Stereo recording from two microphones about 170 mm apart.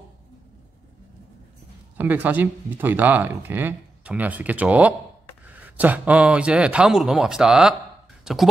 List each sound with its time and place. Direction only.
2.0 s a man's voice: 10° right (ahead or behind)